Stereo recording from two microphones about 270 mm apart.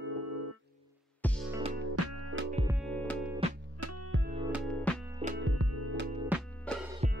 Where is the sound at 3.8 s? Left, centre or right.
Right.